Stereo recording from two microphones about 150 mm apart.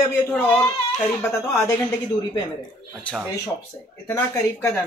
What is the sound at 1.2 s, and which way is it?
Speech, 15° left (ahead or behind).